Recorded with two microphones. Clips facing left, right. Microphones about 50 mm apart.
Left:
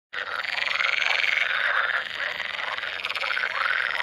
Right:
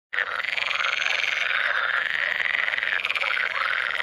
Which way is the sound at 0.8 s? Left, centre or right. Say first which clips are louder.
Left 1 dB; centre.